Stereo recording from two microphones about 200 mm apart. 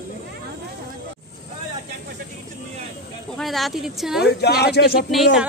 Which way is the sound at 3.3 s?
Centre (ahead or behind).